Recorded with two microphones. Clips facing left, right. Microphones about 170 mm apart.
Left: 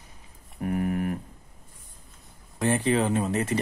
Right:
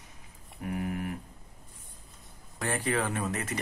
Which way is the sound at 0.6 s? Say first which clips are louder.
Left 6 dB; 50° left (ahead or behind).